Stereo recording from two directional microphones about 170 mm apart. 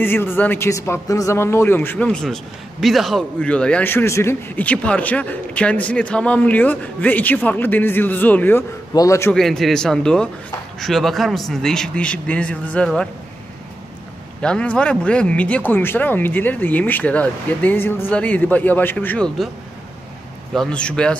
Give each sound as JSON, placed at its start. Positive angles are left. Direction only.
{"t": 0.0, "sound": "a man's voice", "side_deg": 10}
{"t": 9.3, "sound": "a man's voice", "side_deg": 0}
{"t": 14.4, "sound": "a man's voice", "side_deg": 5}
{"t": 20.5, "sound": "a man's voice", "side_deg": 5}